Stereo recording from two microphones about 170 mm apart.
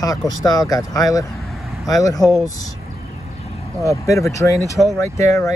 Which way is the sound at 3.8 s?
20° left (ahead or behind).